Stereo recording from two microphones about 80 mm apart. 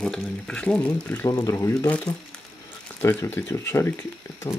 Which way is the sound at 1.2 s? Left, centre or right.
Left.